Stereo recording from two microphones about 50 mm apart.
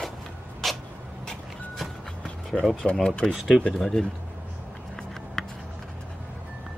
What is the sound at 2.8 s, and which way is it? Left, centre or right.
Speech, left.